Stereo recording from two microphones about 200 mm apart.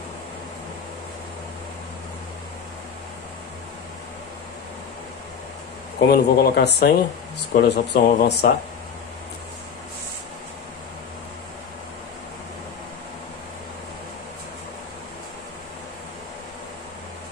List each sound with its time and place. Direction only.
5.9 s speech: 50° left (ahead or behind)